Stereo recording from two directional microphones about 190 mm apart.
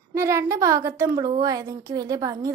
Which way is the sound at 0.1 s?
15° right (ahead or behind).